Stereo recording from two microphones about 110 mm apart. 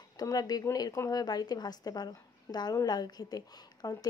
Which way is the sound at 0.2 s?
35° left (ahead or behind).